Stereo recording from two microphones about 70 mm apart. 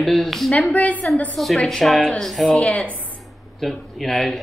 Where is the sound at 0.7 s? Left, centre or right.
Left.